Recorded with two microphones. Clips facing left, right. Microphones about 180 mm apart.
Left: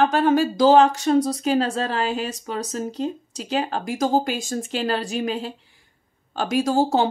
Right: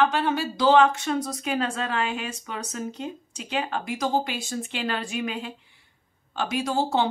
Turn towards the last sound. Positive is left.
turn(degrees=45)  # may be behind; listen again after turning